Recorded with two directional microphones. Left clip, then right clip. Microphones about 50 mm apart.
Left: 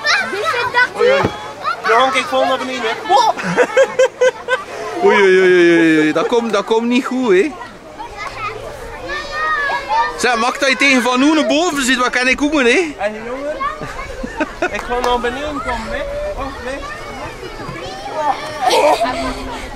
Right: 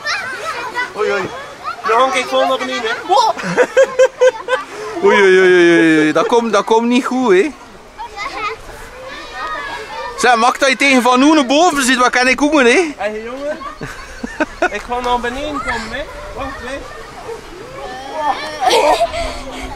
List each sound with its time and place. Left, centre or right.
0.0 s children playing: left
0.9 s a sound: centre
1.6 s a sound: left
2.1 s speech: centre
5.0 s speech: centre
8.2 s children playing: right
10.1 s a man's voice: centre
14.6 s a man's voice: centre
15.6 s speech: right
16.0 s a sound: centre
18.1 s a sound: centre
18.4 s a man's voice: centre